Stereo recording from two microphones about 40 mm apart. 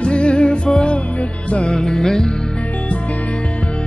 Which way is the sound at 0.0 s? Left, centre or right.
Left.